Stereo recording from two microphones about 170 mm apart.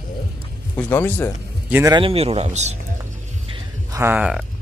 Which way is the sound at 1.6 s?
10° right (ahead or behind).